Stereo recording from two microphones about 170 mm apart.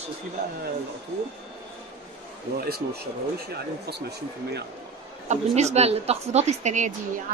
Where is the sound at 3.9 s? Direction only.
75° right (ahead or behind).